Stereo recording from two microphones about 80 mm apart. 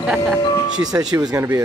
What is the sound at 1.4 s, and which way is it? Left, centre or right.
Speech, right.